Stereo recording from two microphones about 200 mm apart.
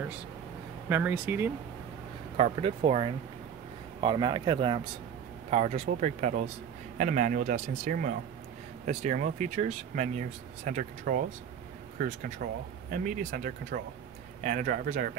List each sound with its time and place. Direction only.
0.8 s speech: 10° right (ahead or behind)
2.3 s speech: 30° right (ahead or behind)